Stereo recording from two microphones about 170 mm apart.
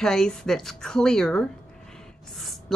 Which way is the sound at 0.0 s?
5° left (ahead or behind).